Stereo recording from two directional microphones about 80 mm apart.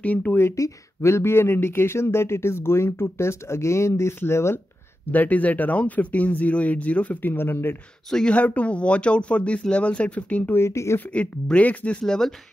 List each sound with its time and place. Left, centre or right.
0.0 s speech: centre
0.4 s speech: left
5.1 s speech: left
8.1 s speech: centre
10.5 s speech: left
11.1 s speech: centre